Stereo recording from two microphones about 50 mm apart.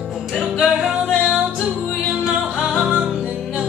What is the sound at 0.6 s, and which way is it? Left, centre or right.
Music, centre.